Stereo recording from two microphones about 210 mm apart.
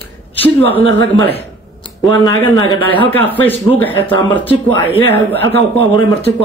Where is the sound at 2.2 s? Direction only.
20° left (ahead or behind).